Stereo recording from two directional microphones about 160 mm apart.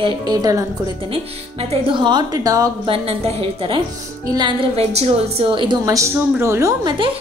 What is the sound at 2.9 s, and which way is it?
A woman's voice, 40° right (ahead or behind).